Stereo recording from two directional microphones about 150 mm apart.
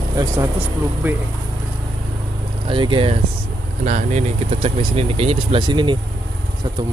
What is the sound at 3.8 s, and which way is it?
Speech, 60° right (ahead or behind).